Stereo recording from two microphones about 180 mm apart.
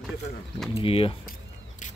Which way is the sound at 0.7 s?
30° left (ahead or behind).